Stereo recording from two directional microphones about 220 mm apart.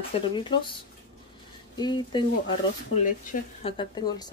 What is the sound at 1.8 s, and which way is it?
Speech, 20° left (ahead or behind).